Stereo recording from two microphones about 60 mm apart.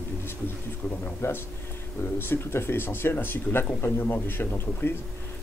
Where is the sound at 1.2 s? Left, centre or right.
Left.